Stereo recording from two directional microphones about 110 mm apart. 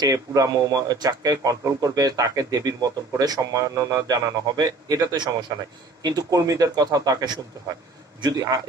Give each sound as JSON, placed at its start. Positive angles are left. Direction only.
{"t": 0.0, "sound": "a man's voice", "side_deg": -35}